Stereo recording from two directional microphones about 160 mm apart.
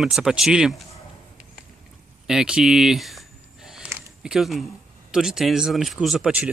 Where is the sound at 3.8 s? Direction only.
15° right (ahead or behind).